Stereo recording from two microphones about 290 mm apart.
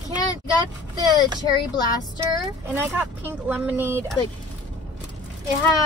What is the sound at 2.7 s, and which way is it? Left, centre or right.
Speech, centre.